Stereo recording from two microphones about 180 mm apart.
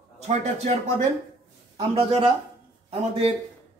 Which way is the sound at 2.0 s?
30° right (ahead or behind).